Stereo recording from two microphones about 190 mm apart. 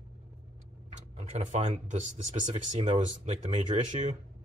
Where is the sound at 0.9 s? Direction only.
35° right (ahead or behind).